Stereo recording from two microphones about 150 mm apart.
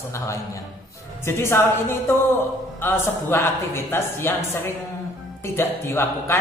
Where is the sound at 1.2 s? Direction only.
15° left (ahead or behind).